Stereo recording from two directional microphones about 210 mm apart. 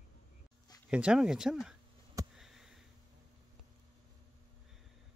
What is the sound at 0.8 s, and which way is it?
Speech, 5° right (ahead or behind).